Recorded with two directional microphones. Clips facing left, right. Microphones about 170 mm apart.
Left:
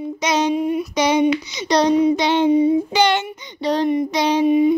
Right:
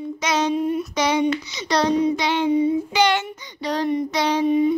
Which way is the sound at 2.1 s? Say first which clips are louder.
Left 4 dB; 25° left (ahead or behind).